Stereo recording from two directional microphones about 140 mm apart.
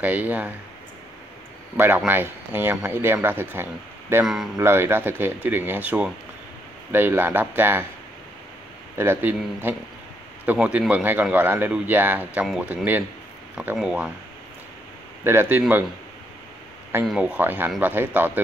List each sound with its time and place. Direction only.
0.0 s speech: 10° right (ahead or behind)
1.8 s speech: 15° right (ahead or behind)
4.6 s speech: 15° right (ahead or behind)
8.9 s speech: 15° right (ahead or behind)
15.2 s speech: 15° right (ahead or behind)
17.0 s speech: 5° right (ahead or behind)